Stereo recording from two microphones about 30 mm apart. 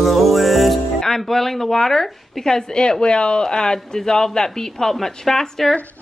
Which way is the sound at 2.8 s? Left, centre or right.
Left.